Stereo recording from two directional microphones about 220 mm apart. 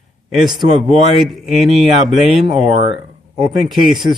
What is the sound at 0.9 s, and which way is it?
A man's voice, centre (ahead or behind).